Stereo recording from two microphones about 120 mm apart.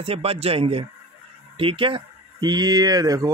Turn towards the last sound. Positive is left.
turn(degrees=-30)  # may be behind; listen again after turning